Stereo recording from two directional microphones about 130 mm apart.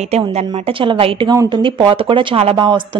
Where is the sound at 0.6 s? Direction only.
45° right (ahead or behind).